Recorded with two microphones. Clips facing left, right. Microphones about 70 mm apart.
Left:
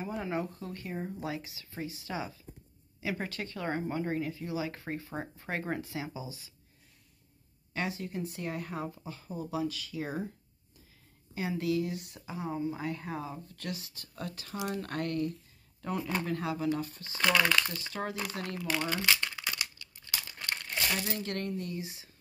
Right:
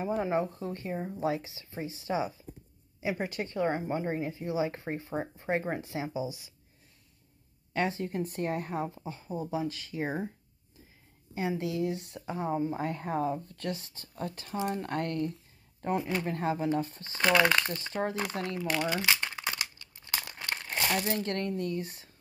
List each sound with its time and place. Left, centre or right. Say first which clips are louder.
0.0 s speech: right 5 dB; right
7.7 s speech: right 5 dB; right
11.3 s speech: even; right
18.9 s speech: right 1 dB; centre
19.3 s crumpling: right 2 dB; right
20.3 s crumpling: right 1 dB; right
21.2 s speech: right 4 dB; right